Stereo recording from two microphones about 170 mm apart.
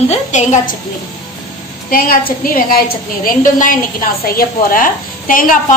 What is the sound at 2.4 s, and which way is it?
A woman's voice, 55° left (ahead or behind).